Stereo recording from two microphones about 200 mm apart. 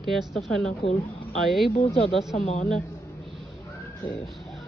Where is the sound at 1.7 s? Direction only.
30° left (ahead or behind).